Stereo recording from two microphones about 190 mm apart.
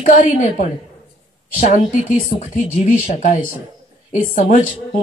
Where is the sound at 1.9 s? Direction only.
45° left (ahead or behind).